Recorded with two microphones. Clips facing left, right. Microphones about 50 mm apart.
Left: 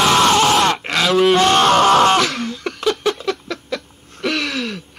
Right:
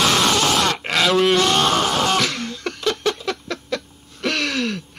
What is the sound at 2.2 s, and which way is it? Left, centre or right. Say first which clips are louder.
Throat clearing: left 3 dB; centre.